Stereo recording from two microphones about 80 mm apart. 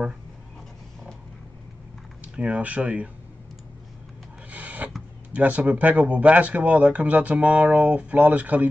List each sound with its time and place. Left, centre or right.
2.3 s speech: centre
4.5 s filing: centre
5.3 s speech: centre